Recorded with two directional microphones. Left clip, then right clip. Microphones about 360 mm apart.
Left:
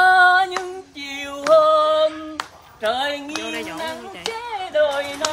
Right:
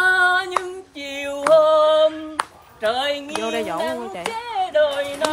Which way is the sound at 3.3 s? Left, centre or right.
Centre.